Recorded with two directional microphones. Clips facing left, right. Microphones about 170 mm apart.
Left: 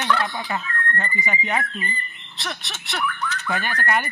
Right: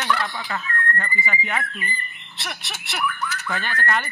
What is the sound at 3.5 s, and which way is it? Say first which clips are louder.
Speech: left 2 dB; 15° left (ahead or behind).